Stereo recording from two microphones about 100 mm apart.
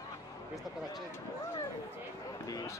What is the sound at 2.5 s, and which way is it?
Speech, 35° left (ahead or behind).